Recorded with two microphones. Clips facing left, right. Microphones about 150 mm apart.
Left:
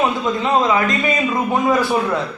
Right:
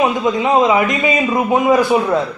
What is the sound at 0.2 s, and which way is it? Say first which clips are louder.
A man's voice: right 4 dB; 15° right (ahead or behind).